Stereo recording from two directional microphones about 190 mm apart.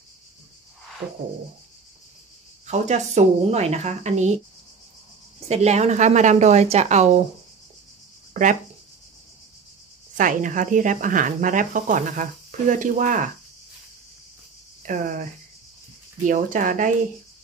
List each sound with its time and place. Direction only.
2.6 s a woman's voice: 35° right (ahead or behind)
5.5 s a woman's voice: 35° right (ahead or behind)
8.3 s a sound: 45° right (ahead or behind)
10.1 s speech: 45° right (ahead or behind)
14.9 s speech: 45° right (ahead or behind)
16.3 s speech: 45° right (ahead or behind)